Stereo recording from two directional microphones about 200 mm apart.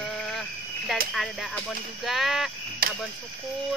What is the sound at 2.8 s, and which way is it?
Cricket, 45° right (ahead or behind).